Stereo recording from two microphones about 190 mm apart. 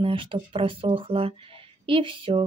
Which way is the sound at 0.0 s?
25° right (ahead or behind).